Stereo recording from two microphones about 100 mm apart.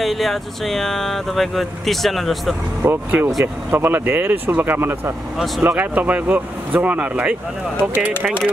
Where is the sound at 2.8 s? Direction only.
20° right (ahead or behind).